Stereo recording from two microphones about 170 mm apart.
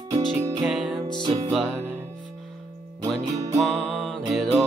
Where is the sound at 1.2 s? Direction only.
25° right (ahead or behind).